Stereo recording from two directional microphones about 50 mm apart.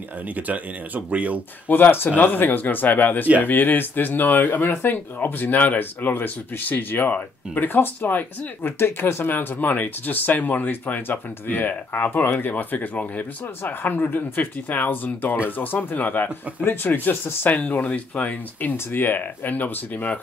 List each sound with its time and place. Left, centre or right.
0.5 s speech: right
1.7 s speech: left
8.7 s speech: left
17.6 s speech: left
18.7 s speech: left